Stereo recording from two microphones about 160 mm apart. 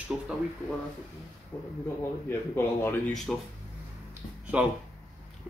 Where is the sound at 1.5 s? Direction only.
10° left (ahead or behind).